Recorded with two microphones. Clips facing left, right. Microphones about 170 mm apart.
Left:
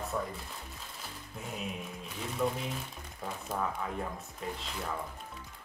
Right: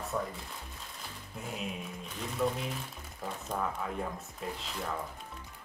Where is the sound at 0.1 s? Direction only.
Centre (ahead or behind).